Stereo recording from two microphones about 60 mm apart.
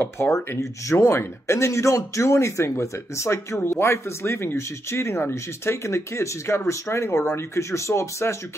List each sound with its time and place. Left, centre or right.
0.0 s speech: left